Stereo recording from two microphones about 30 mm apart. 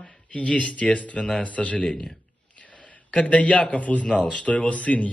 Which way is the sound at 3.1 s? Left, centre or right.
Left.